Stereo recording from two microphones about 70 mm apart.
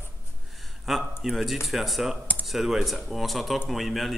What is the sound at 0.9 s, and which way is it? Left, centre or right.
Speech, centre.